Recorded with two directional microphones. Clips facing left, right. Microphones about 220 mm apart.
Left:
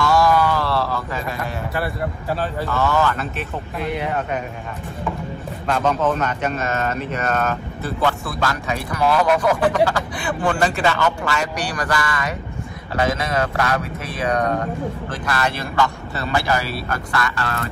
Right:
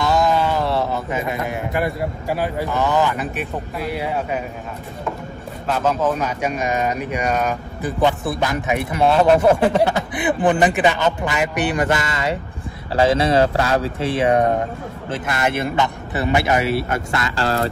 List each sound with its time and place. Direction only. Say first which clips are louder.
0.0 s a sound: left 1 dB; 20° right (ahead or behind)
3.8 s speech: left 1 dB; 5° right (ahead or behind)
5.7 s speech: even; 5° right (ahead or behind); by 17.6 s 30° right (ahead or behind)